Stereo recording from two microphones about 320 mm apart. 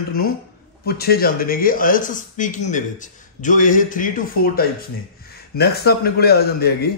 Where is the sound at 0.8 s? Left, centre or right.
Left.